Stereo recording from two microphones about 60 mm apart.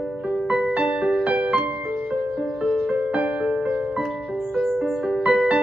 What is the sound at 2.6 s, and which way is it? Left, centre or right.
Music, centre.